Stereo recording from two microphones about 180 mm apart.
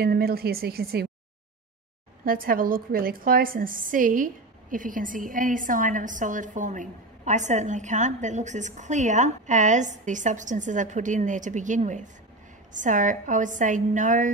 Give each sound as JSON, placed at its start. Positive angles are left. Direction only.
{"t": 0.0, "sound": "speech", "side_deg": -60}
{"t": 2.2, "sound": "a woman's voice", "side_deg": -50}